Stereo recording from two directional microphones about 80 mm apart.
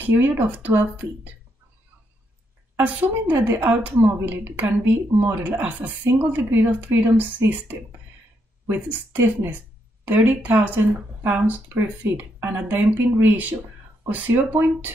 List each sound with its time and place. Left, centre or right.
0.0 s a woman's voice: right
2.9 s a woman's voice: centre